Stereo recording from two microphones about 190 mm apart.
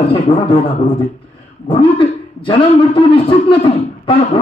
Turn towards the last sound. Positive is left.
turn(degrees=25)  # may be behind; listen again after turning